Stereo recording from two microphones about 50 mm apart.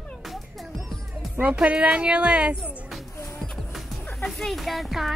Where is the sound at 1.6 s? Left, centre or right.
Centre.